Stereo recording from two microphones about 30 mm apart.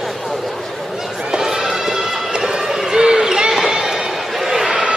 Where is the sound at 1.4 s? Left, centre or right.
Centre.